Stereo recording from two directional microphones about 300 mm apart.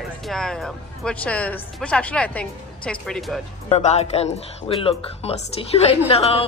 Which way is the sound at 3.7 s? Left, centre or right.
Left.